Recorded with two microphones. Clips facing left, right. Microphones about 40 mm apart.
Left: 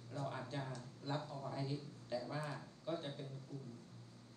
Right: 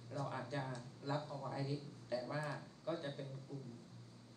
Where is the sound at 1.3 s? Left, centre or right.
Right.